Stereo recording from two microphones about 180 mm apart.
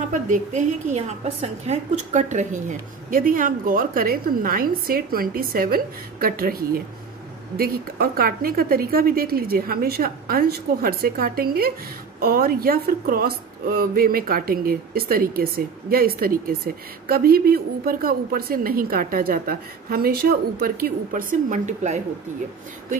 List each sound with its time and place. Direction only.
0.1 s a woman's voice: 45° right (ahead or behind)